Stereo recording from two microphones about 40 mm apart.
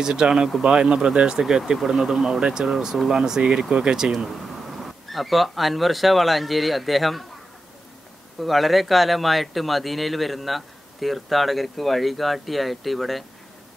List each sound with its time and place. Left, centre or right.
0.0 s speech: centre
1.8 s speech: centre
4.1 s speech: centre
8.4 s speech: centre